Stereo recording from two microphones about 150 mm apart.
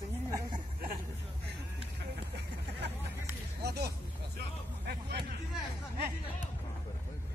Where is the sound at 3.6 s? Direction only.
90° right.